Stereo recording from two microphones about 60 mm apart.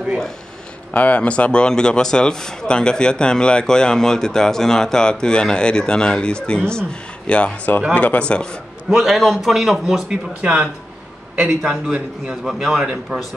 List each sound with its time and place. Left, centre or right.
0.9 s speech: left
8.8 s a man's voice: centre